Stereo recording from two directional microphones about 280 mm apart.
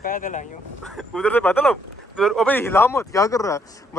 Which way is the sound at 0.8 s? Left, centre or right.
Centre.